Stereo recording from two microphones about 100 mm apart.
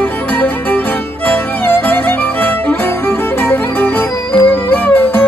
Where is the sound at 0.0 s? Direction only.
20° left (ahead or behind).